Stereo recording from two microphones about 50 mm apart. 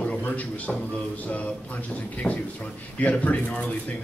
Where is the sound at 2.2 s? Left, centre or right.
Centre.